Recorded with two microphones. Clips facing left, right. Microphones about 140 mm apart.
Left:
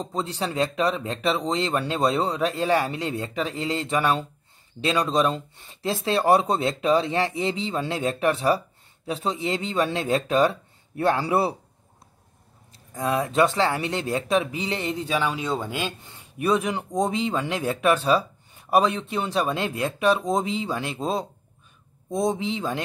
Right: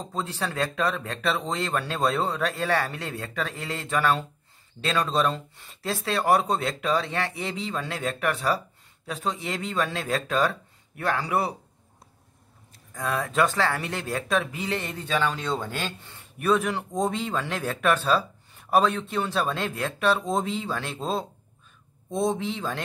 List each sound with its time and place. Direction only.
0.0 s speech: 20° left (ahead or behind)
12.9 s speech: 25° left (ahead or behind)